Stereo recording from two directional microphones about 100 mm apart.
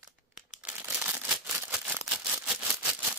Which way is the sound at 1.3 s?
10° right (ahead or behind).